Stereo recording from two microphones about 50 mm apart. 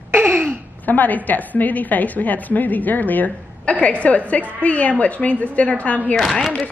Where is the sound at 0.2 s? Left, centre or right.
Right.